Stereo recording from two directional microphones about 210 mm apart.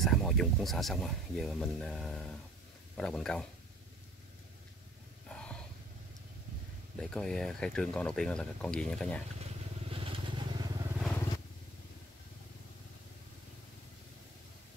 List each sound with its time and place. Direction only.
0.0 s speech: centre (ahead or behind)
5.3 s a sound: 5° left (ahead or behind)
7.0 s speech: 5° left (ahead or behind)
9.8 s vehicle: 25° right (ahead or behind)
11.0 s vehicle: centre (ahead or behind)